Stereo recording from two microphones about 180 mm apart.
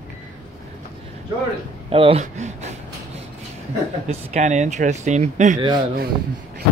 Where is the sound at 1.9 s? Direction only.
30° right (ahead or behind).